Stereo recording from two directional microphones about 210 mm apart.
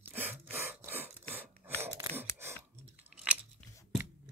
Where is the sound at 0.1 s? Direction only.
10° right (ahead or behind).